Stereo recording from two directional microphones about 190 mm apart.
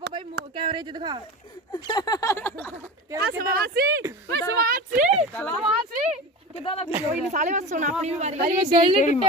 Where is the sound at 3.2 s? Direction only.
55° right (ahead or behind); by 5.2 s 40° right (ahead or behind).